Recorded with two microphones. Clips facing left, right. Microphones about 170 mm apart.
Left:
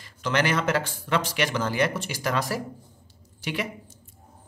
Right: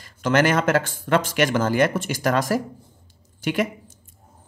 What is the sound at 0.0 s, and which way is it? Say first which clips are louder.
A man's voice: right 6 dB; 45° right (ahead or behind).